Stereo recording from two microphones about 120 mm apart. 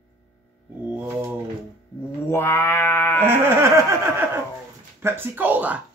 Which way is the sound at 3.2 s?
20° right (ahead or behind).